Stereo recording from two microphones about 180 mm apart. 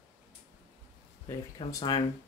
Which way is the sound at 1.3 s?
25° left (ahead or behind).